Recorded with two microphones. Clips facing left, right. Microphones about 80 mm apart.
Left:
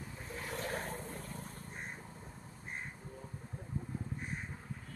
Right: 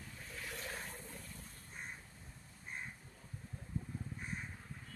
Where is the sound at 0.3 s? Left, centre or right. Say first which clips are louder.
Left 7 dB; left.